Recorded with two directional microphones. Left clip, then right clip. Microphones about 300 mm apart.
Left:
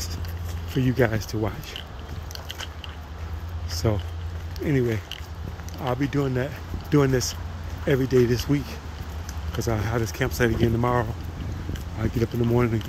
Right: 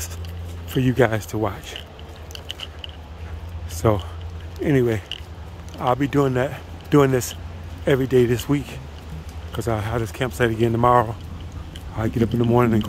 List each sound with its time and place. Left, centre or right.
0.7 s speech: centre
3.8 s speech: centre